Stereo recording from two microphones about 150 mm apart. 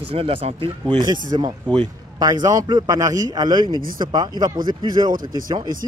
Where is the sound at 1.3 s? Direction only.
30° right (ahead or behind).